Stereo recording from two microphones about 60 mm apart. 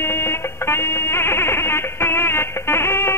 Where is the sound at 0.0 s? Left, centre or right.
Left.